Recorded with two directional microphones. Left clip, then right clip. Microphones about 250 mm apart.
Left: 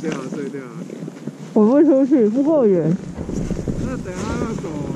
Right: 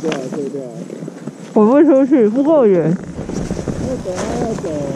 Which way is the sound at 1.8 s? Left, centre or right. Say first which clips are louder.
Right 3 dB; centre.